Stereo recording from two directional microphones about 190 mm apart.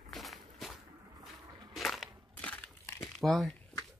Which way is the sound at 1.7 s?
Centre (ahead or behind).